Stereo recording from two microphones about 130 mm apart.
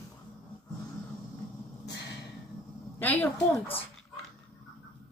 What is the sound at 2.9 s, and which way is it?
Speech, 15° left (ahead or behind).